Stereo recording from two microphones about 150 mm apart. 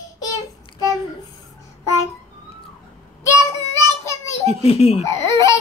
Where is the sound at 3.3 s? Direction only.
20° left (ahead or behind).